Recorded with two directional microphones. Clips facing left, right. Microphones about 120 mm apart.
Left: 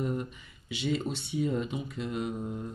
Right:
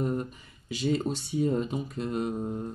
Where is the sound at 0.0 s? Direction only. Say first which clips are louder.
Right 3 dB; 40° right (ahead or behind).